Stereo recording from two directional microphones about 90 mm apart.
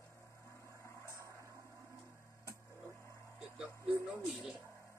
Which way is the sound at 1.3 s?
35° right (ahead or behind).